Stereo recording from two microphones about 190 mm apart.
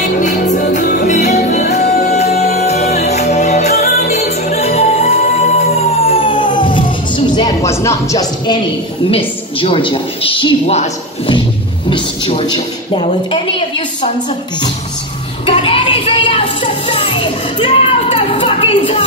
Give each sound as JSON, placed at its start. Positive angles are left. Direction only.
{"t": 0.2, "sound": "music", "side_deg": 40}
{"t": 9.1, "sound": "a woman's voice", "side_deg": 30}
{"t": 11.9, "sound": "music", "side_deg": 30}
{"t": 12.9, "sound": "a woman's voice", "side_deg": 25}
{"t": 15.4, "sound": "music", "side_deg": 30}